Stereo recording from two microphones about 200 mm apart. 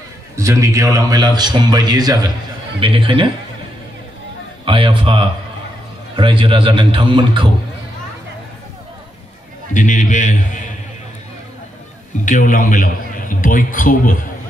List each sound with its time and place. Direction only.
0.4 s a man's voice: 15° right (ahead or behind)
4.6 s a man's voice: 25° right (ahead or behind)
9.8 s a man's voice: 40° left (ahead or behind)
12.3 s a man's voice: 40° left (ahead or behind)